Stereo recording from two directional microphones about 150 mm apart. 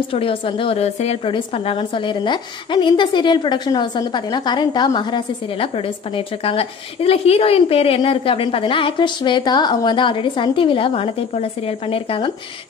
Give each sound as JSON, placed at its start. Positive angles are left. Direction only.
{"t": 0.1, "sound": "a woman's voice", "side_deg": 40}